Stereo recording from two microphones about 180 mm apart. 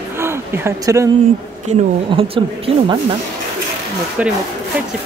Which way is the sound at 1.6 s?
30° right (ahead or behind).